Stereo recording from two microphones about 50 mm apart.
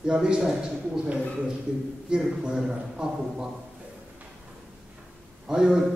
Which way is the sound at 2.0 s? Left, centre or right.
Centre.